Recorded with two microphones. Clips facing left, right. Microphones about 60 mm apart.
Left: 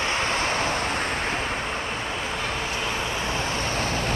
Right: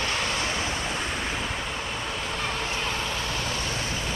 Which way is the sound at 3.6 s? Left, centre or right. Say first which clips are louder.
Left 4 dB; left.